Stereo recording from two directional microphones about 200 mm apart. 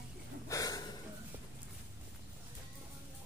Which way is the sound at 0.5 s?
15° left (ahead or behind).